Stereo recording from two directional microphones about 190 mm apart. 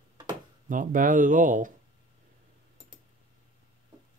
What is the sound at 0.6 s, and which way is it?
Speech, 45° right (ahead or behind).